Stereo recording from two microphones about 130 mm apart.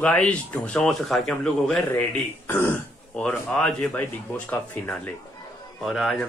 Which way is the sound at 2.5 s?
20° left (ahead or behind).